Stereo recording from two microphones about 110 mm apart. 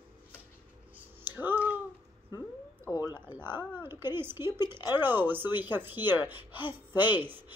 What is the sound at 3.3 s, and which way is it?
Speech, 20° right (ahead or behind).